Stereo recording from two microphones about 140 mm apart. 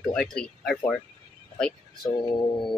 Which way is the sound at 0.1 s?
5° left (ahead or behind).